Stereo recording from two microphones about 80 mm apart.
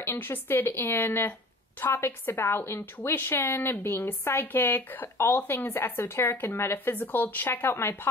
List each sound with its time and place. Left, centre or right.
0.0 s a woman's voice: left